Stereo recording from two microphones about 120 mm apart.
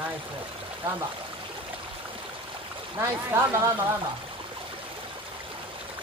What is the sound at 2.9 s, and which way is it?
Speech, 20° right (ahead or behind).